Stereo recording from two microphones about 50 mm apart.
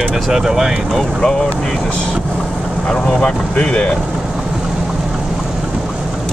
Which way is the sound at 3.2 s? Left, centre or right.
Centre.